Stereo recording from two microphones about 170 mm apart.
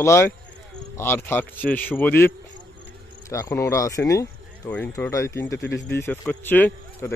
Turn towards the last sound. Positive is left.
turn(degrees=10)  # may be behind; listen again after turning